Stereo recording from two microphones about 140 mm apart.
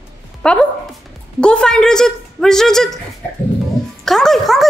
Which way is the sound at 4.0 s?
5° left (ahead or behind).